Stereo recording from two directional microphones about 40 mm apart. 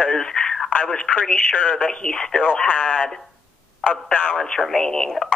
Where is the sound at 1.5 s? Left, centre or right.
Left.